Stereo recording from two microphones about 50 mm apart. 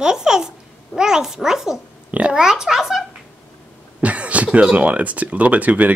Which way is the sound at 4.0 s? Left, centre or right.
Right.